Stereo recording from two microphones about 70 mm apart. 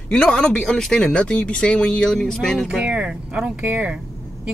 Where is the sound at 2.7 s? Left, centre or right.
Centre.